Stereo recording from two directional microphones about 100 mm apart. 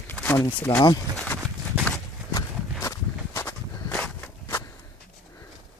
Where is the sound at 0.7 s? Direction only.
55° left (ahead or behind).